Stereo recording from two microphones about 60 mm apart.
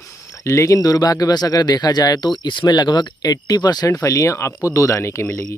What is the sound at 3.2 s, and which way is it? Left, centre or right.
Speech, left.